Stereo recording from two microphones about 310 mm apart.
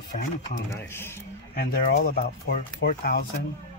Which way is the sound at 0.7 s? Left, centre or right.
Centre.